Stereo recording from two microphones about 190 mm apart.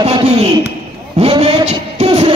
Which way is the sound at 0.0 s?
35° right (ahead or behind).